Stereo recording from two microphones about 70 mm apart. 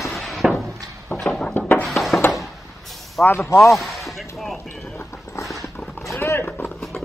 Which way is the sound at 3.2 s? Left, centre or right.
Centre.